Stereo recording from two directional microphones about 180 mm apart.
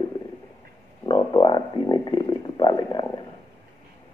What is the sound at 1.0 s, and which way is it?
Speech, 25° left (ahead or behind).